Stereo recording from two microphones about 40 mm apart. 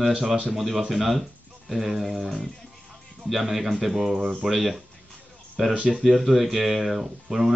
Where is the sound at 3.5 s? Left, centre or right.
Centre.